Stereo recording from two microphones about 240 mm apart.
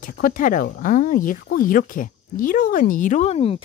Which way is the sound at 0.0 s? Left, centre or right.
Left.